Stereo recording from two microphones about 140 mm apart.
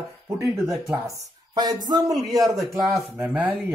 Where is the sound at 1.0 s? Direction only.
25° right (ahead or behind).